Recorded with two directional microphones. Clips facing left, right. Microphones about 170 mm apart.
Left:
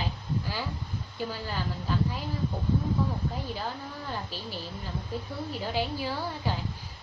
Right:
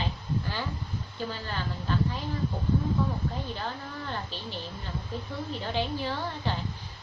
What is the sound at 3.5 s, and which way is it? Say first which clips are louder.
A woman's voice: even; 10° left (ahead or behind).